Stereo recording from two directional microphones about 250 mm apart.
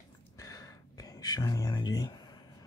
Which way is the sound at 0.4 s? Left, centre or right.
Centre.